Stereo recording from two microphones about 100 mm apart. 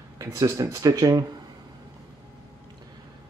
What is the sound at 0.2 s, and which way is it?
Speech, 35° right (ahead or behind).